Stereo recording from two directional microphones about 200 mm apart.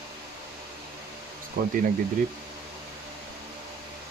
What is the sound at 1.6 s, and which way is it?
Speech, 45° right (ahead or behind).